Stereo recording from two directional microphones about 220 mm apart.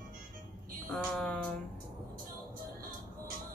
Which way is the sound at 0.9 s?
Centre (ahead or behind).